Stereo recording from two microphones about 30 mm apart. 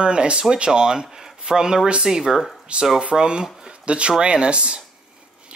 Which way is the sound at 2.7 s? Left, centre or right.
Right.